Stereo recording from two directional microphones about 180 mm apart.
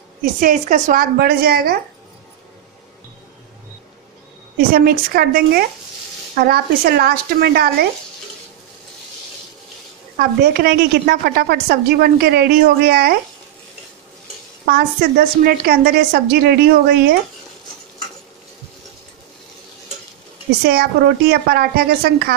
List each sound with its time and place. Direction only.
0.2 s a woman's voice: 50° right (ahead or behind)
1.1 s a woman's voice: 60° right (ahead or behind)
4.6 s a woman's voice: 55° right (ahead or behind)
10.1 s a woman's voice: 55° right (ahead or behind)
14.7 s a woman's voice: 55° right (ahead or behind)
20.6 s a woman's voice: 60° right (ahead or behind)